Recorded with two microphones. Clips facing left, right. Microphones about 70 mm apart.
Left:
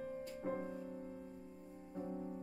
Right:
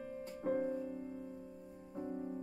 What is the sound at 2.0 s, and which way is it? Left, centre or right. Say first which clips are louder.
Music: right 4 dB; right.